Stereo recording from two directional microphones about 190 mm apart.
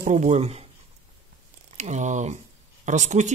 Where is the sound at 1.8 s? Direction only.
40° right (ahead or behind).